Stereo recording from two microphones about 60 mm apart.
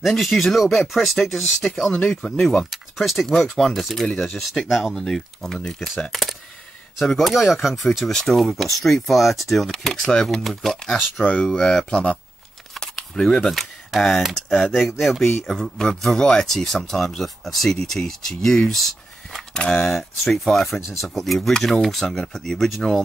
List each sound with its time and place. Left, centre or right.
0.1 s speech: centre
3.3 s speech: centre
8.1 s speech: centre
12.7 s typewriter: centre
14.8 s speech: centre
19.5 s speech: centre
19.9 s speech: centre